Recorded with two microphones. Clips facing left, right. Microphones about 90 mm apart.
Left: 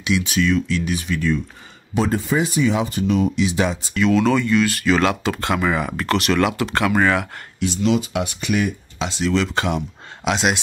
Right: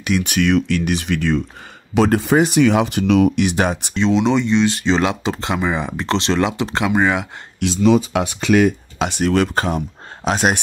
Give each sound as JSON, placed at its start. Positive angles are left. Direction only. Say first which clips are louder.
{"t": 0.0, "sound": "speech", "louder": "right 2 dB", "side_deg": -55}
{"t": 3.3, "sound": "speech", "louder": "right 2 dB", "side_deg": -60}
{"t": 3.9, "sound": "speech", "louder": "even", "side_deg": -25}
{"t": 7.6, "sound": "speech", "louder": "right 5 dB", "side_deg": -65}